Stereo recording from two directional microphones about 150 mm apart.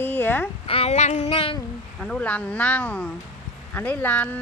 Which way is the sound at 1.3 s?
35° left (ahead or behind).